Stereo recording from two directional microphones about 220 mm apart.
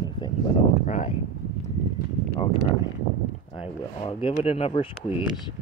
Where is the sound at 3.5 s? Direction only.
25° left (ahead or behind).